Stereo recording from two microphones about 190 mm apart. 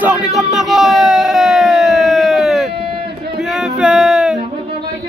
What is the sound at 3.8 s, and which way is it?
Music, 5° right (ahead or behind).